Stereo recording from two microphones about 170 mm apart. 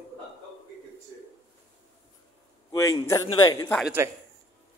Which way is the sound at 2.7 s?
20° left (ahead or behind).